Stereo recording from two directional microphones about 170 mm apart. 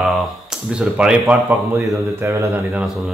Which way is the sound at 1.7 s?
20° right (ahead or behind).